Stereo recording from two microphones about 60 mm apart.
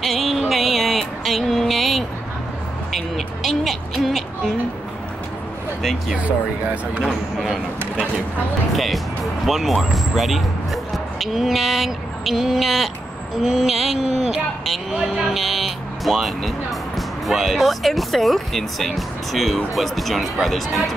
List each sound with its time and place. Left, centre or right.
0.0 s a sound: centre
2.9 s speech: centre
5.8 s speech: centre
6.1 s speech: right
7.0 s speech: centre
8.7 s speech: centre